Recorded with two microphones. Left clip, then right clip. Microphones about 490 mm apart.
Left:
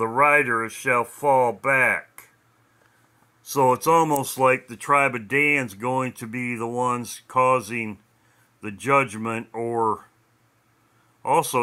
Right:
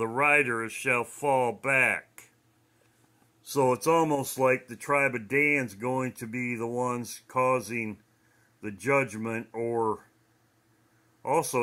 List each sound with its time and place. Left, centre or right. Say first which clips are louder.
0.0 s speech: left 6 dB; right
3.4 s speech: left 6 dB; right
11.2 s speech: left 6 dB; right